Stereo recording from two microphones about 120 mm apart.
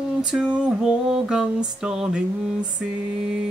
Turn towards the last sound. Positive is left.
turn(degrees=-5)  # may be behind; listen again after turning